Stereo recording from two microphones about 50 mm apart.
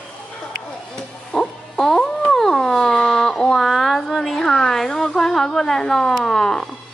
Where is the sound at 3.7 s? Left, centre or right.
Centre.